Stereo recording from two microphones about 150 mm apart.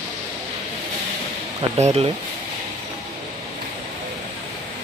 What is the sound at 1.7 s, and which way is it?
Speech, 45° right (ahead or behind).